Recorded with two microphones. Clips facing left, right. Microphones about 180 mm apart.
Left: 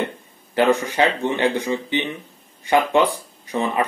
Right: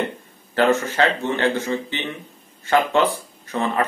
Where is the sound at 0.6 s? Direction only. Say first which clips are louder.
Left 1 dB; 15° left (ahead or behind).